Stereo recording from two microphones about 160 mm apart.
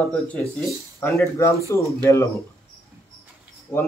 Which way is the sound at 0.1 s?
10° left (ahead or behind).